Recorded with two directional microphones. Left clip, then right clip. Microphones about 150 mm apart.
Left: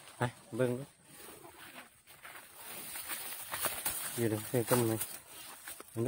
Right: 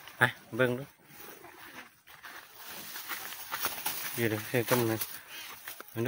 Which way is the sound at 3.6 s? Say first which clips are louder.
Right 2 dB; 20° left (ahead or behind).